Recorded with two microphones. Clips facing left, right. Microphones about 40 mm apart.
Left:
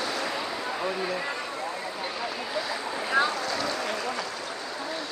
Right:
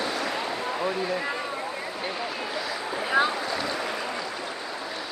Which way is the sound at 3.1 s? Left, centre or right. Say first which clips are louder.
Right 1 dB; centre.